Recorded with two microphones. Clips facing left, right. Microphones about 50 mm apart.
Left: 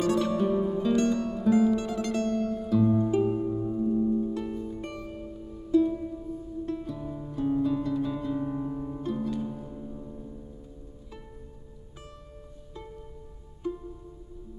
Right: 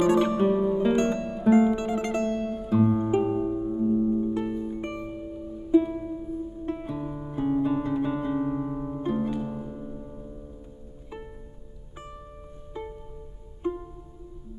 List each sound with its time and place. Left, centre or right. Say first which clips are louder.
0.0 s music: right 4 dB; right
0.6 s music: right 3 dB; right
6.6 s guitar: right 2 dB; right
9.7 s music: right 2 dB; right
12.7 s music: right 6 dB; right